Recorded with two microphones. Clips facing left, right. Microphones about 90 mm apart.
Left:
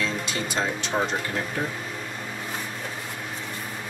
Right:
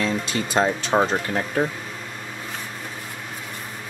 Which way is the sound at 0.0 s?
40° right (ahead or behind).